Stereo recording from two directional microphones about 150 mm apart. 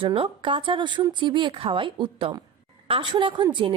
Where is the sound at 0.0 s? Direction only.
35° right (ahead or behind).